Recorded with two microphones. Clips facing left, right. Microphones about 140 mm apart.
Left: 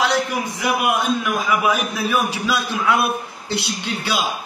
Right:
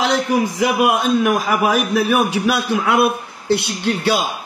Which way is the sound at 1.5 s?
65° right (ahead or behind).